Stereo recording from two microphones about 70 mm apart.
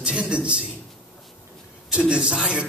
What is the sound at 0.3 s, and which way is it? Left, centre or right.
Speech, centre.